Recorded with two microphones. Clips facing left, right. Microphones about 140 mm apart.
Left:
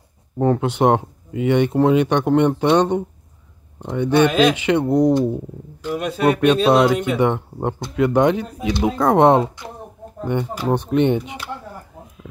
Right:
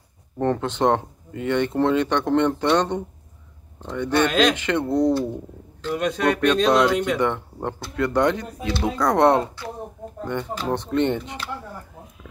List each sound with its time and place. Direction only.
0.4 s speech: 10° left (ahead or behind)